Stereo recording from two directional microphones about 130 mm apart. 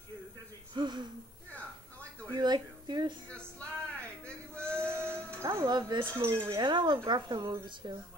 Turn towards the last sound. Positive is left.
turn(degrees=-35)  # may be behind; listen again after turning